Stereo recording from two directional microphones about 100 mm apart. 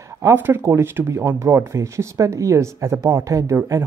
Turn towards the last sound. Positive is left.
turn(degrees=-30)  # may be behind; listen again after turning